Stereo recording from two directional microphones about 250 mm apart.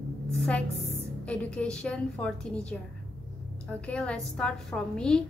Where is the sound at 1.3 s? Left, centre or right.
Centre.